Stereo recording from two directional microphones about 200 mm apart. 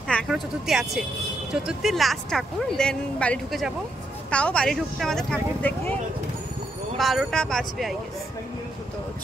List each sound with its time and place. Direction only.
0.1 s speech: centre (ahead or behind)
7.0 s speech: centre (ahead or behind)